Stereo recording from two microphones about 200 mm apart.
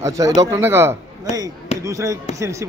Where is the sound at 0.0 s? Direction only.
20° right (ahead or behind).